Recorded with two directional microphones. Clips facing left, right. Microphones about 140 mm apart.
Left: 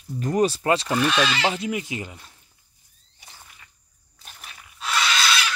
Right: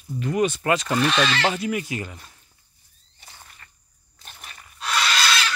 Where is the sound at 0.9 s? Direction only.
5° left (ahead or behind).